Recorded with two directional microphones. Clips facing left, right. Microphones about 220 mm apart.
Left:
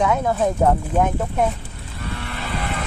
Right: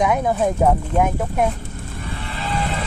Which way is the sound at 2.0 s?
50° left (ahead or behind).